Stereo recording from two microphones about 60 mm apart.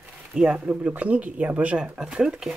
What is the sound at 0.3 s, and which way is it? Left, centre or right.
Speech, centre.